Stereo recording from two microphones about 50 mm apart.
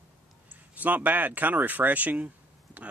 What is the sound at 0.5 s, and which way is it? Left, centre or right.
Speech, right.